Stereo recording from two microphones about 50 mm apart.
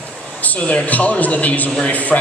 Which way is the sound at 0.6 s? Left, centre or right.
Left.